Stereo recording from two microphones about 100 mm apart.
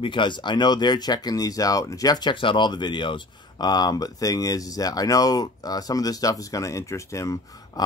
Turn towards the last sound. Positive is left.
turn(degrees=30)  # may be behind; listen again after turning